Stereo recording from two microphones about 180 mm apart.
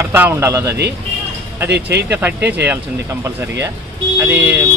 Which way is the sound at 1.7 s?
70° right (ahead or behind).